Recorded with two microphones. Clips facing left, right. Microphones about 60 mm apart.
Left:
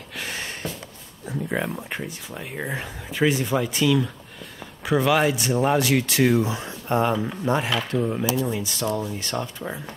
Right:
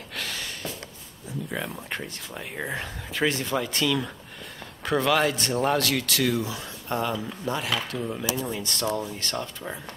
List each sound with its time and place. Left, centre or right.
0.2 s a sound: left
1.8 s speech: centre
8.5 s speech: centre